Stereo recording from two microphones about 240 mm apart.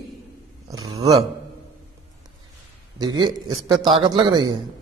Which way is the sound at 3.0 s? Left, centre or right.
Centre.